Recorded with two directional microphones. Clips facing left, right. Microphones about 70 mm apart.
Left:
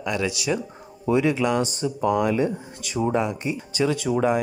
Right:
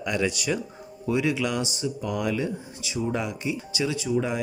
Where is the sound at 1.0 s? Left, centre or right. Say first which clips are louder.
Left 4 dB; left.